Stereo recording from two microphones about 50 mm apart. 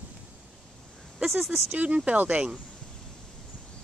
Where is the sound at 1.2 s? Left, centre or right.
Centre.